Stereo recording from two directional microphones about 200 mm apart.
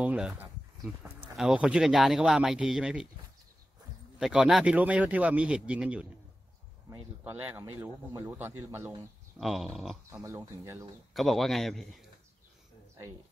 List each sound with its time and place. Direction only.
0.0 s speech: 5° right (ahead or behind)
4.2 s speech: centre (ahead or behind)
9.4 s speech: centre (ahead or behind)
10.2 s speech: 15° right (ahead or behind)
11.1 s speech: centre (ahead or behind)